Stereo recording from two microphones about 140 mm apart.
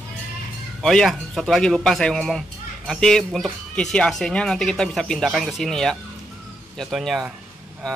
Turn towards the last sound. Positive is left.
turn(degrees=0)  # may be behind; listen again after turning